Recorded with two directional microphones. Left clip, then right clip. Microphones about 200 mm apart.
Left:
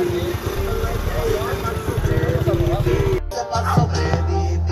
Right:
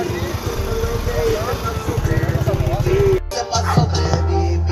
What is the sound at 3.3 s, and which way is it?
Music, 15° right (ahead or behind).